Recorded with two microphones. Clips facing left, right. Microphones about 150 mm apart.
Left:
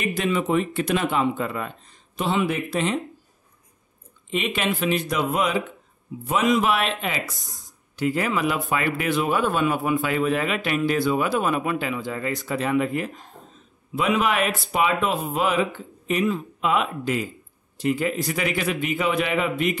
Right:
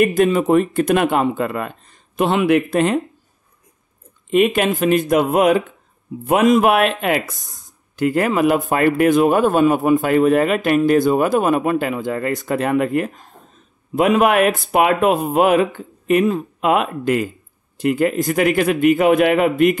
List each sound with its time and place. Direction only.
0.0 s a man's voice: 45° right (ahead or behind)
4.3 s a man's voice: 50° right (ahead or behind)
7.3 s speech: 20° right (ahead or behind)
7.9 s a man's voice: 50° right (ahead or behind)